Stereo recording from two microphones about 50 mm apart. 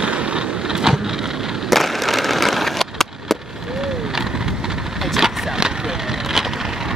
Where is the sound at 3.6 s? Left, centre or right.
Centre.